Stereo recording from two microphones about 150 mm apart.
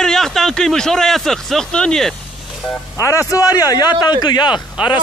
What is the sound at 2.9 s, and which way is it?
A man's voice, 20° left (ahead or behind).